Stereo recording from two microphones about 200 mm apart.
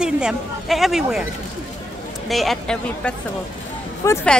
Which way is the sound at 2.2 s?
Centre (ahead or behind).